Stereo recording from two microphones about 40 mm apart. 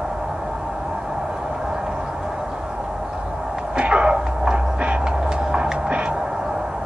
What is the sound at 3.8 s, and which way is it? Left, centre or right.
Music, right.